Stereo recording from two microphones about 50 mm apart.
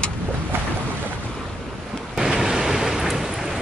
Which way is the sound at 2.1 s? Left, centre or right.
Centre.